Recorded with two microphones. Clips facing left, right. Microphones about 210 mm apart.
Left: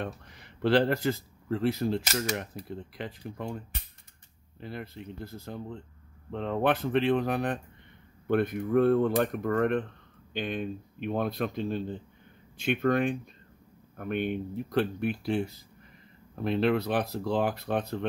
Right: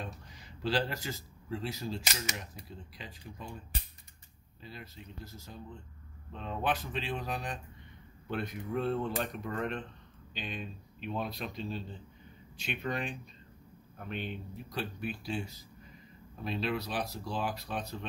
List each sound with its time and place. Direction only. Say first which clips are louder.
0.0 s speech: left 7 dB; 60° left (ahead or behind)